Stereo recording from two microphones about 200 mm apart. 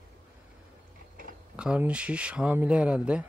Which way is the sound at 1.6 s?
5° right (ahead or behind).